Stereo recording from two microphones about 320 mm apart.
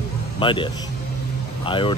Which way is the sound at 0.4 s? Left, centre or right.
Centre.